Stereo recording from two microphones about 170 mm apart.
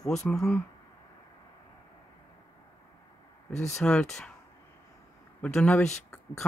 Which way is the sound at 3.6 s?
5° left (ahead or behind).